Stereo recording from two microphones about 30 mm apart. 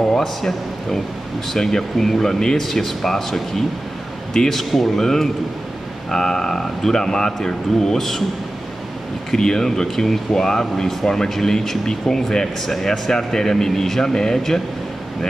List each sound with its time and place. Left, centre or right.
0.2 s speech: centre
1.6 s speech: centre
4.3 s speech: centre
4.6 s speech: centre
9.4 s speech: centre